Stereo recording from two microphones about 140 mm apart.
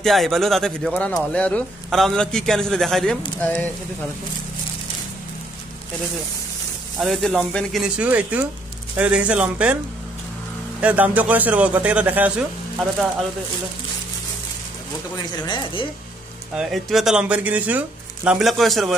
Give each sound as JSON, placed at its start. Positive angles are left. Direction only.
{"t": 0.0, "sound": "speech", "side_deg": 0}
{"t": 7.0, "sound": "a man's voice", "side_deg": 0}
{"t": 10.8, "sound": "a man's voice", "side_deg": -10}
{"t": 15.3, "sound": "a woman's voice", "side_deg": 30}
{"t": 16.5, "sound": "speech", "side_deg": 0}